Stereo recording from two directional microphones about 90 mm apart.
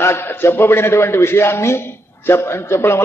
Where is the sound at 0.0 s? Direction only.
25° left (ahead or behind).